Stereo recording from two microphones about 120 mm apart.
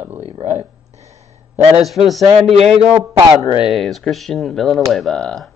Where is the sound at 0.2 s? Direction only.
60° right (ahead or behind).